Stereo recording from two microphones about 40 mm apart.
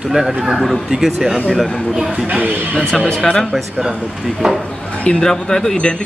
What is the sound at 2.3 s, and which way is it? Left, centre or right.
Speech, right.